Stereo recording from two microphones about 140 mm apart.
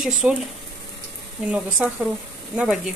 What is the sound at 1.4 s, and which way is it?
Speech, 10° right (ahead or behind).